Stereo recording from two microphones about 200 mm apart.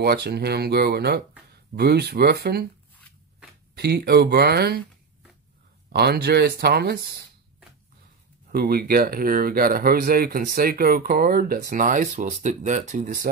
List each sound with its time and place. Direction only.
0.0 s speech: 50° right (ahead or behind)
3.7 s speech: 55° right (ahead or behind)
5.9 s speech: 55° right (ahead or behind)
8.5 s speech: 50° right (ahead or behind)